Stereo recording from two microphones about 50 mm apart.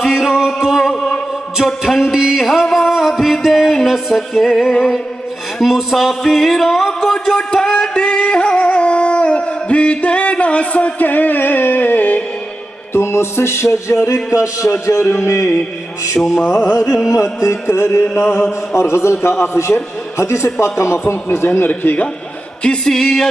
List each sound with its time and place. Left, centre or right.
0.0 s music: centre
1.8 s speech: centre
2.1 s a sound: centre
2.4 s a sound: centre
5.6 s speech: centre
6.9 s music: centre; by 12.2 s left
12.9 s a man's voice: left
14.7 s a man's voice: left
16.3 s music: centre
17.5 s a man's voice: left
18.1 s a sound: left
19.5 s a man's voice: left
21.5 s a man's voice: left
22.8 s music: centre